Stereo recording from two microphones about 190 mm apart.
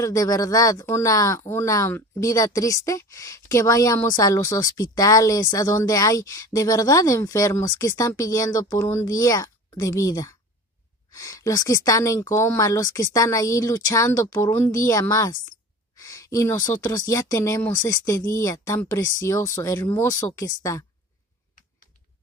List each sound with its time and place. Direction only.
0.0 s speech: 15° left (ahead or behind)